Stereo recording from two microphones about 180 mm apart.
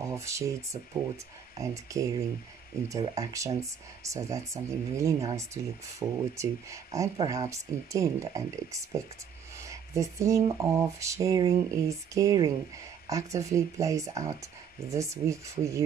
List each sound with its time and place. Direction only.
0.0 s speech: 15° right (ahead or behind)
1.6 s speech: 15° right (ahead or behind)
9.6 s speech: 15° right (ahead or behind)